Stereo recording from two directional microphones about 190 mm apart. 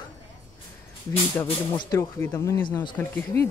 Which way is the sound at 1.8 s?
15° left (ahead or behind).